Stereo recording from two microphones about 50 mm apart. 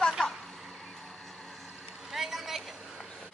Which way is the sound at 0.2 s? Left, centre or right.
Centre.